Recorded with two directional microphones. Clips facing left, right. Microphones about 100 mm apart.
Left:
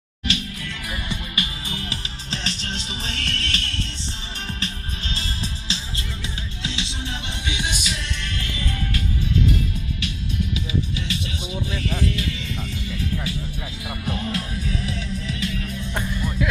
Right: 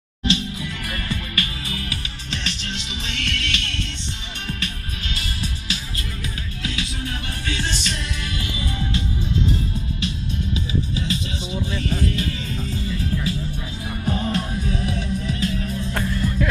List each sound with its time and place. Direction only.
0.2 s music: 30° right (ahead or behind)
0.8 s music: 15° left (ahead or behind); by 15.8 s 35° right (ahead or behind)
15.9 s music: 10° left (ahead or behind)